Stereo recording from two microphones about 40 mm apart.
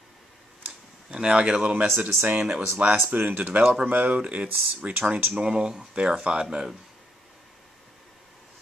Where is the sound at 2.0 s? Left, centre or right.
Right.